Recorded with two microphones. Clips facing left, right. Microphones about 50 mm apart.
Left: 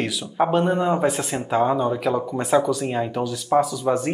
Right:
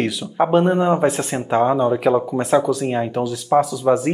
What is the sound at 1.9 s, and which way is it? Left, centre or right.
Speech, centre.